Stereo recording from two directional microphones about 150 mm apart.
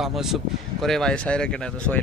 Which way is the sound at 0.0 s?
Centre (ahead or behind).